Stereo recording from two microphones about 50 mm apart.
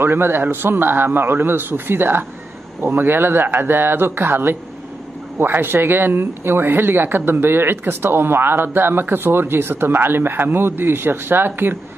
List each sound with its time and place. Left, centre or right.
0.0 s speech: right